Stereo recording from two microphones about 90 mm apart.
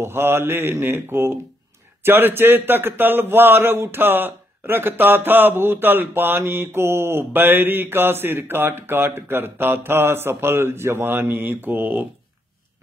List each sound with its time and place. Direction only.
0.0 s a man's voice: 25° right (ahead or behind)